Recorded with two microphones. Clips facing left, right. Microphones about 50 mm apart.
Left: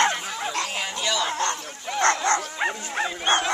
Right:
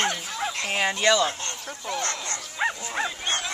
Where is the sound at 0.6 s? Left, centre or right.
Right.